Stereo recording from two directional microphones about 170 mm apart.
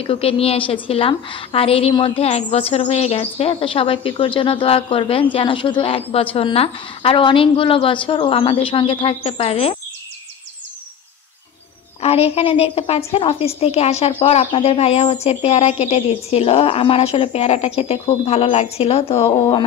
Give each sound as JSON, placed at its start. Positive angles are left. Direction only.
{"t": 0.0, "sound": "a woman's voice", "side_deg": 35}
{"t": 12.0, "sound": "a woman's voice", "side_deg": 35}